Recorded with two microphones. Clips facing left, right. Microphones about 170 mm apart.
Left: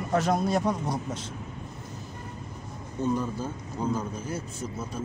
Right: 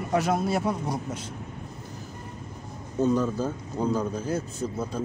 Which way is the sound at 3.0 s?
90° right.